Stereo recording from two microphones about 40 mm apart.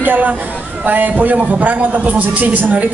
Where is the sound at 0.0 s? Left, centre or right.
Right.